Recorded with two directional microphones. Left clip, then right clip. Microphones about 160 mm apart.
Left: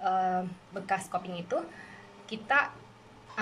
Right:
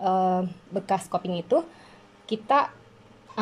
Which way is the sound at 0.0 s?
30° right (ahead or behind).